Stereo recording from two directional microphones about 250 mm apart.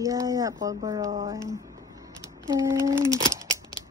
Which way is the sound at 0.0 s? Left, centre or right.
Centre.